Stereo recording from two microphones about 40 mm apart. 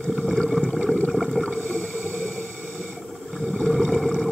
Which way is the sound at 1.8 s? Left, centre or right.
Left.